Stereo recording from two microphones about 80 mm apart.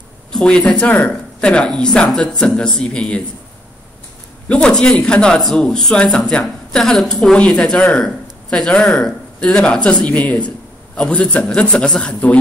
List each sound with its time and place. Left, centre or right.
0.3 s speech: centre
4.5 s speech: centre